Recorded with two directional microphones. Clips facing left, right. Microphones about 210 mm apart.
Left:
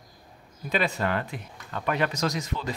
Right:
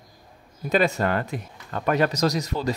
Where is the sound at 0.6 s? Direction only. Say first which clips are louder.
Right 5 dB; 45° right (ahead or behind).